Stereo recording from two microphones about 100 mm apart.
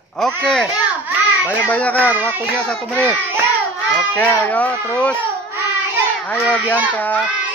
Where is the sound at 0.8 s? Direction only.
15° right (ahead or behind).